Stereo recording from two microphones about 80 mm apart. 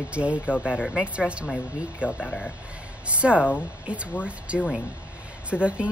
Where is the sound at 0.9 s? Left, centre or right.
Centre.